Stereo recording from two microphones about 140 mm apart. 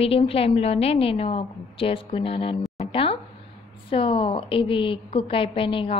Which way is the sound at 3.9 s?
40° left (ahead or behind).